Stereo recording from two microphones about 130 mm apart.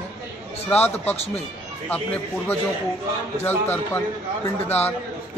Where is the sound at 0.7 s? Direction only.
15° left (ahead or behind).